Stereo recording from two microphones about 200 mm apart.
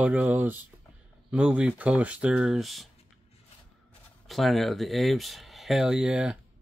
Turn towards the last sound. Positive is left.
turn(degrees=-5)  # may be behind; listen again after turning